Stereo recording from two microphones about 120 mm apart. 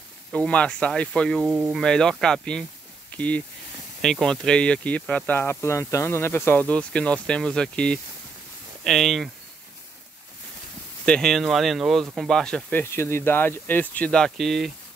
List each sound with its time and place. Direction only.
0.3 s speech: 10° left (ahead or behind)
1.5 s speech: 5° right (ahead or behind)
1.8 s speech: 5° left (ahead or behind)
11.1 s speech: 5° left (ahead or behind)
12.9 s speech: 20° left (ahead or behind); by 14.7 s centre (ahead or behind)